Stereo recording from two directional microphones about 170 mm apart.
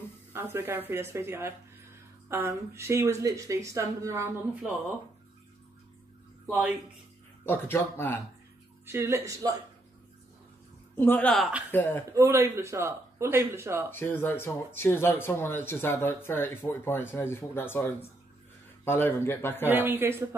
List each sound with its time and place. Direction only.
0.3 s speech: 15° right (ahead or behind)
7.4 s speech: 15° left (ahead or behind)
8.8 s speech: 15° right (ahead or behind)
11.0 s speech: 10° left (ahead or behind)
12.1 s speech: 15° right (ahead or behind)
13.8 s speech: 10° left (ahead or behind)
19.7 s speech: 15° right (ahead or behind)